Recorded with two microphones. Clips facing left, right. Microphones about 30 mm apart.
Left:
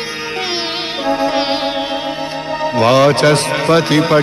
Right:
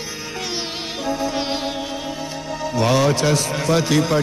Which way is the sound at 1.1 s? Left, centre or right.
Left.